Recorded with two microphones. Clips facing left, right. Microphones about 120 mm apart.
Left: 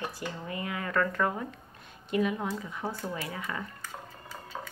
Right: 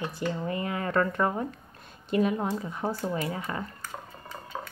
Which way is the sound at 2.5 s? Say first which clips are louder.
Right 4 dB; 35° right (ahead or behind).